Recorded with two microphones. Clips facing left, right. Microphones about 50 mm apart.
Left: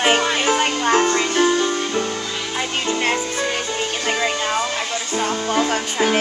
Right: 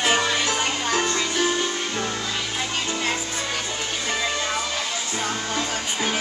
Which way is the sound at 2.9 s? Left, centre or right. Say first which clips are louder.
Left 6 dB; left.